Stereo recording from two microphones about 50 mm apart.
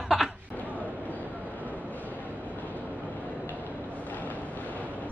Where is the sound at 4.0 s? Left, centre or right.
Left.